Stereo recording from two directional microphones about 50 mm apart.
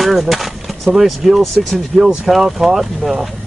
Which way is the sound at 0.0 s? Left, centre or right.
Centre.